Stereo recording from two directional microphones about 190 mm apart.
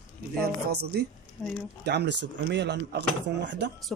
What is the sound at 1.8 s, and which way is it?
Speech, 60° right (ahead or behind).